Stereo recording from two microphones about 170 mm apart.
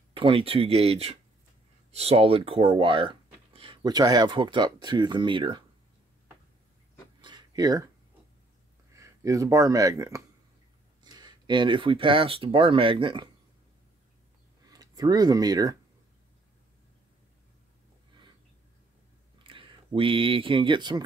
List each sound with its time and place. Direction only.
0.1 s speech: 30° right (ahead or behind)
7.2 s a sound: 25° right (ahead or behind)
8.9 s speech: 20° right (ahead or behind)
14.7 s speech: 20° right (ahead or behind)
19.3 s speech: 30° right (ahead or behind)